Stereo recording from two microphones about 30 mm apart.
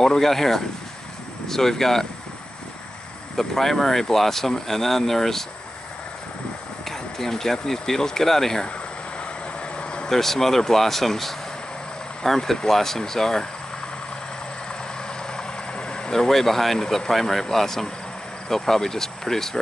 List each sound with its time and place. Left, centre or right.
0.0 s speech: centre
3.3 s speech: centre
6.8 s speech: centre
9.2 s vehicle: left
10.0 s speech: centre
15.2 s vehicle: left
16.1 s speech: centre